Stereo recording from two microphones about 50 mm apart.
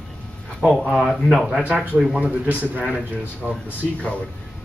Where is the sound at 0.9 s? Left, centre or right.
Centre.